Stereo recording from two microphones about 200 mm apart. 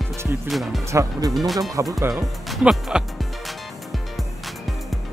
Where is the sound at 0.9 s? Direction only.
15° right (ahead or behind).